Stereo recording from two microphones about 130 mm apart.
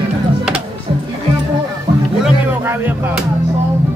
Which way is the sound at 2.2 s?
15° right (ahead or behind).